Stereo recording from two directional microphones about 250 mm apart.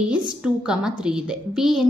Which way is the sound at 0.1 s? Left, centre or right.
Centre.